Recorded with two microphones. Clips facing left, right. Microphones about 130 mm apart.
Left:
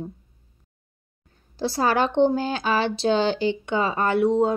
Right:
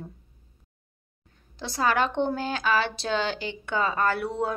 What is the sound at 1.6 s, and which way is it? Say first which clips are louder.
Speech: left 3 dB; 30° left (ahead or behind).